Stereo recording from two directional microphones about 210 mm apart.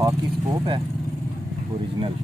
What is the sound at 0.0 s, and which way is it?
Speech, 20° right (ahead or behind).